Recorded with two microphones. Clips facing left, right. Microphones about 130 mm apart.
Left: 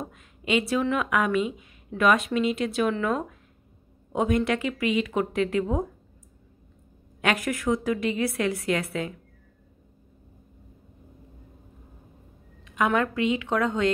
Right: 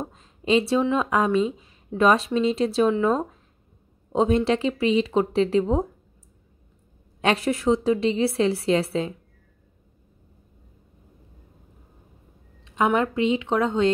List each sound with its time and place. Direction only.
0.0 s a woman's voice: 30° right (ahead or behind)
7.2 s a woman's voice: 30° right (ahead or behind)
12.6 s a woman's voice: 25° right (ahead or behind)